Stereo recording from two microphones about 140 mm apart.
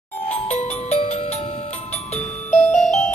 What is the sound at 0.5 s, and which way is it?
Music, 50° left (ahead or behind).